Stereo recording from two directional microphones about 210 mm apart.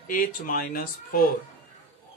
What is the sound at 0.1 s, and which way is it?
Speech, 40° left (ahead or behind).